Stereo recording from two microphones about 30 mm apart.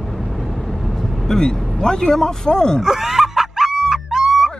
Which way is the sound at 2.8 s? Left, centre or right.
Centre.